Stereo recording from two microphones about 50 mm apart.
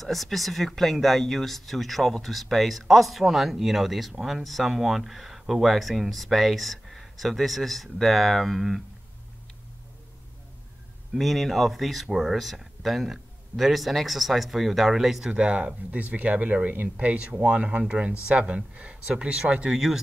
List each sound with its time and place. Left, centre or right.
0.0 s speech: centre
11.1 s speech: centre
15.3 s speech: centre